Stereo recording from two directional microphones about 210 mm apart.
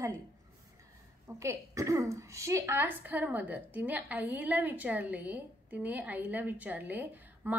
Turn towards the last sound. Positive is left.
turn(degrees=-10)  # may be behind; listen again after turning